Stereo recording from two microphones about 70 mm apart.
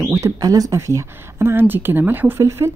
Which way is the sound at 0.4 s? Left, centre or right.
Right.